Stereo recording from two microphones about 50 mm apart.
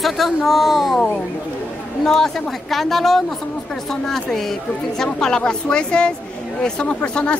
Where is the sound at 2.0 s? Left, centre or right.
Centre.